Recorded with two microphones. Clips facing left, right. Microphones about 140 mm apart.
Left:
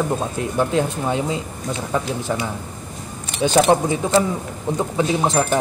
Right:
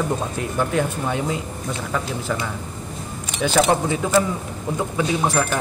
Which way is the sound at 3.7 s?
20° left (ahead or behind).